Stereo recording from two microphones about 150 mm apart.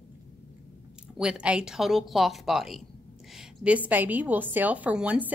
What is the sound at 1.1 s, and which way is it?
A woman's voice, 5° right (ahead or behind).